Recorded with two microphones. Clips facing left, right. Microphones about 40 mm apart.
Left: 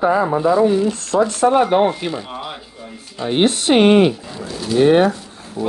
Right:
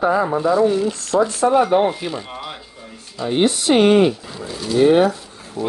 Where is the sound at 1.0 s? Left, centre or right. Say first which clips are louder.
Left 1 dB; left.